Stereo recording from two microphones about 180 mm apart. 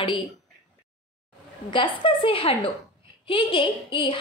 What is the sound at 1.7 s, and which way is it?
A woman's voice, 30° left (ahead or behind).